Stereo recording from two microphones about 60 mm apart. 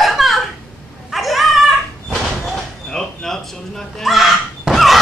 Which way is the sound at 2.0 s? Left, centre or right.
Centre.